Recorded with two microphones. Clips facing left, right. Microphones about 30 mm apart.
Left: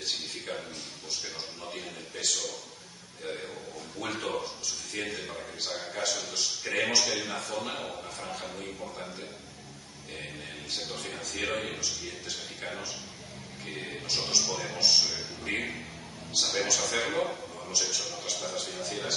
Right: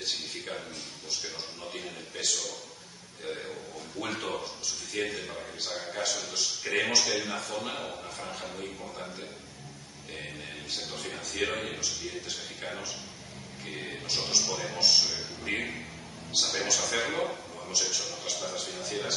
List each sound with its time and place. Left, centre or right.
1.8 s a man's voice: centre
4.0 s a man's voice: centre
4.9 s a man's voice: right
5.9 s a man's voice: centre
11.4 s a man's voice: centre